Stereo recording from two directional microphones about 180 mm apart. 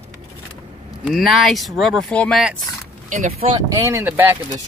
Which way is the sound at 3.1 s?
40° right (ahead or behind).